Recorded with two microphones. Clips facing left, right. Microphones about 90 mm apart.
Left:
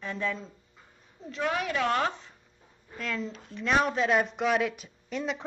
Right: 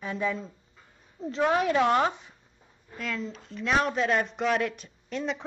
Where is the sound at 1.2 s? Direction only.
30° right (ahead or behind).